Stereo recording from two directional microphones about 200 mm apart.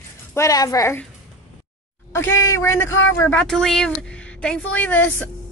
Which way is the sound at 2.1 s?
15° left (ahead or behind).